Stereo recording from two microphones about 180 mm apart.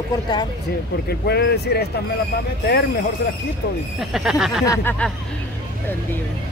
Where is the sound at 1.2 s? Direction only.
60° left (ahead or behind).